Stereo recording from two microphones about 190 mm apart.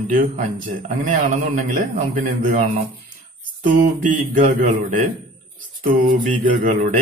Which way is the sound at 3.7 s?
45° right (ahead or behind).